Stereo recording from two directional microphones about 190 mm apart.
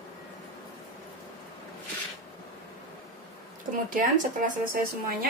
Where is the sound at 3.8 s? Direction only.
45° right (ahead or behind).